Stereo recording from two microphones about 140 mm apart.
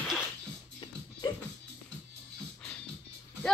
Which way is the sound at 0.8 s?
30° left (ahead or behind).